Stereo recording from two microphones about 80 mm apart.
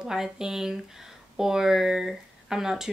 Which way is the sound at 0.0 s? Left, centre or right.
Centre.